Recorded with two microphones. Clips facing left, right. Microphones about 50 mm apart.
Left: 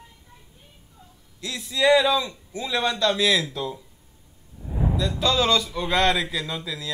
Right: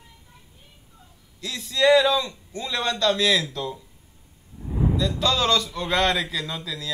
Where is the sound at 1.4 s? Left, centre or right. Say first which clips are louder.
Right 1 dB; centre.